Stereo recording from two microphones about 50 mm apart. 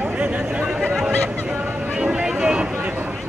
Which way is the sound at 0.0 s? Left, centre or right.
Right.